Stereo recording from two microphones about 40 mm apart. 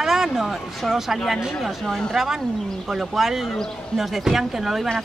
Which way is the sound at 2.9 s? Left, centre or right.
Centre.